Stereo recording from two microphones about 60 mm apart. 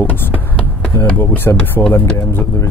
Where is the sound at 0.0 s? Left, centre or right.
Left.